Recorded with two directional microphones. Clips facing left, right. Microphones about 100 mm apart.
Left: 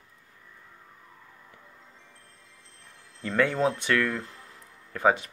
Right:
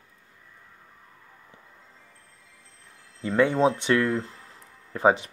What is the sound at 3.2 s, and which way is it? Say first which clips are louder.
Speech: right 4 dB; 20° right (ahead or behind).